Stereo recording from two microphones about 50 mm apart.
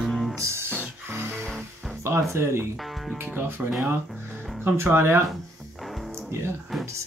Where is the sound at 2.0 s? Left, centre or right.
Right.